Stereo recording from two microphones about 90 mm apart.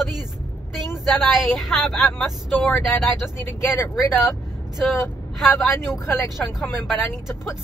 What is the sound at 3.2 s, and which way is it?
Speech, 30° left (ahead or behind).